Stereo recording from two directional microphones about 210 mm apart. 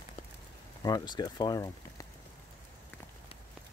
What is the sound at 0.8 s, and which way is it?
Speech, 20° left (ahead or behind).